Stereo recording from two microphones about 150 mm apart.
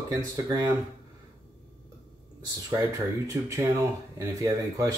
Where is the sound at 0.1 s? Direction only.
25° right (ahead or behind).